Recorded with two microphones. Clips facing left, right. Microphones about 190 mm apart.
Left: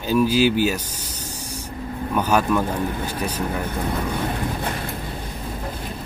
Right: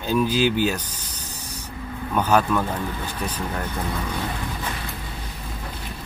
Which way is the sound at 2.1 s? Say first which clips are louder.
Even; 10° left (ahead or behind).